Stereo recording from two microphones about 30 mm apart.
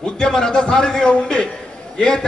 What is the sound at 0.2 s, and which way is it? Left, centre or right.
A man's voice, left.